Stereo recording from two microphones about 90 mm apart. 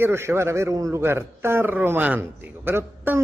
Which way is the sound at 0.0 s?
30° right (ahead or behind).